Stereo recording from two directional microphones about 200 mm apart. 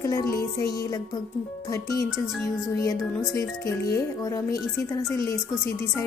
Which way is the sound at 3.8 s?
15° left (ahead or behind).